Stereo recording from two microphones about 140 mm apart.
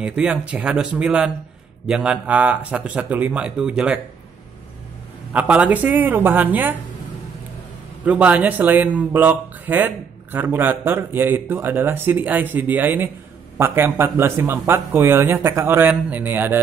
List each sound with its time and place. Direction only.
0.0 s speech: 5° right (ahead or behind)
5.3 s speech: 10° right (ahead or behind)
8.0 s speech: 10° right (ahead or behind)